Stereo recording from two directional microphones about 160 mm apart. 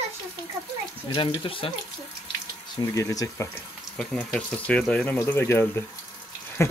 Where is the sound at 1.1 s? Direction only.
35° left (ahead or behind).